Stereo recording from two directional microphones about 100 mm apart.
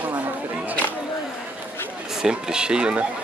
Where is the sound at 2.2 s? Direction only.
5° right (ahead or behind).